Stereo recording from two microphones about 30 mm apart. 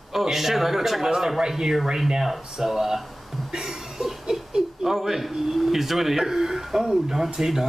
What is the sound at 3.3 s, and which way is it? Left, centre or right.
Cough, centre.